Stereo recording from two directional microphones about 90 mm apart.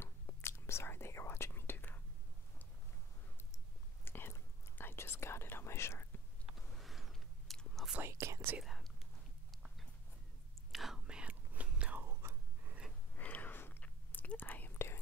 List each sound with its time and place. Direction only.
0.0 s whispering: 25° left (ahead or behind)
4.0 s whispering: 25° left (ahead or behind)
6.5 s a sound: centre (ahead or behind)
8.0 s speech: 30° right (ahead or behind)
10.7 s whispering: 5° right (ahead or behind)
12.0 s whispering: 30° right (ahead or behind)
13.1 s whispering: 20° left (ahead or behind)